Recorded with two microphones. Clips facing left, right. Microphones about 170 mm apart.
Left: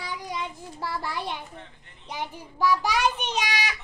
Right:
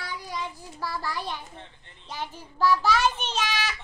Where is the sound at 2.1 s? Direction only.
15° left (ahead or behind).